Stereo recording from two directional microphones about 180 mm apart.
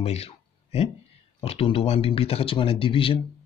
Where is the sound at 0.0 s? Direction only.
35° left (ahead or behind).